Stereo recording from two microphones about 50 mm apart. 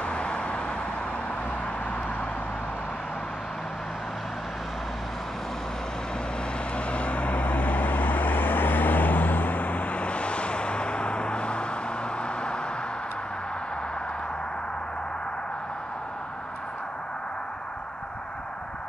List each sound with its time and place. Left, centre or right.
0.0 s vehicle: left
6.9 s vehicle: left